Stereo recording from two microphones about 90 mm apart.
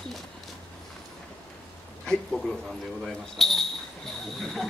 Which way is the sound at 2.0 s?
5° left (ahead or behind).